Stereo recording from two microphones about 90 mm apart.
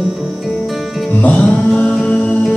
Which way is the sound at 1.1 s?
15° left (ahead or behind).